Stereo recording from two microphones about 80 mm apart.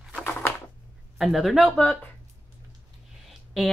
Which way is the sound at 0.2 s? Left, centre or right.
Left.